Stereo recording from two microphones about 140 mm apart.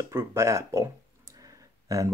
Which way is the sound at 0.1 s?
20° right (ahead or behind).